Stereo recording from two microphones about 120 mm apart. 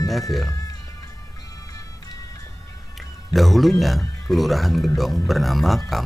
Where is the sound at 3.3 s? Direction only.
Centre (ahead or behind).